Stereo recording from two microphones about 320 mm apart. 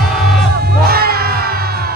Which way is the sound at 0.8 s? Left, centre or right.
Right.